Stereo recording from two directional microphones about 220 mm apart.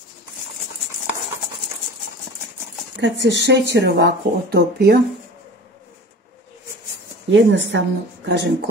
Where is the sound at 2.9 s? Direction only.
50° right (ahead or behind).